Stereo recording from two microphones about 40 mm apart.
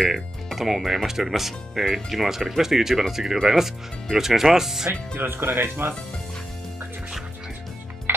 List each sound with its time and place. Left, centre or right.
0.1 s speech: centre
5.1 s speech: right